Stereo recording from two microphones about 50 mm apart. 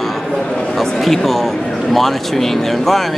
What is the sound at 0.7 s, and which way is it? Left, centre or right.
A man's voice, centre.